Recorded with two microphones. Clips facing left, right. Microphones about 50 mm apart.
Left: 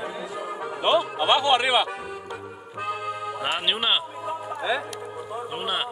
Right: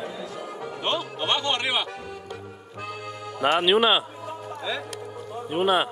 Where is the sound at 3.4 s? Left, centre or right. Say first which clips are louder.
Right 8 dB; centre.